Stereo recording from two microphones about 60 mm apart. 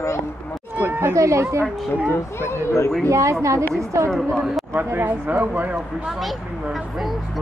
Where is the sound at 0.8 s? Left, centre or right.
Right.